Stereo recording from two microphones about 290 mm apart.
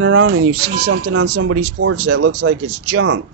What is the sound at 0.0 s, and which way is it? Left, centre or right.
Speech, right.